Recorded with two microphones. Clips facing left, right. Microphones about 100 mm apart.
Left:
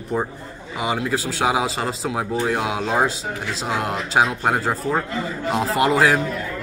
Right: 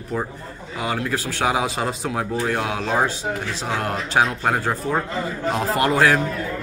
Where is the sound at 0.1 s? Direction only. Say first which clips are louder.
Left 2 dB; 20° left (ahead or behind).